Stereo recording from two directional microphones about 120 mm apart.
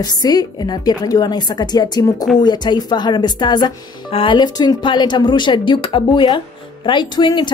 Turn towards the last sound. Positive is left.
turn(degrees=40)  # may be behind; listen again after turning